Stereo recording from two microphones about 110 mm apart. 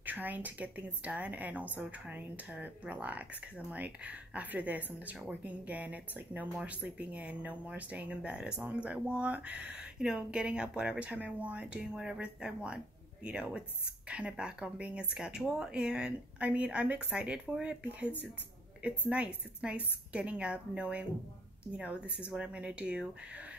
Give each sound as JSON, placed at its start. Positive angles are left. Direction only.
{"t": 0.0, "sound": "speech", "side_deg": -15}